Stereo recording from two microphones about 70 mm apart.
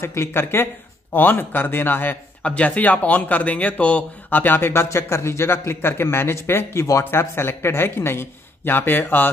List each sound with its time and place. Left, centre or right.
0.0 s speech: left
2.4 s speech: centre; by 6.8 s left
6.8 s speech: left
7.1 s speech: left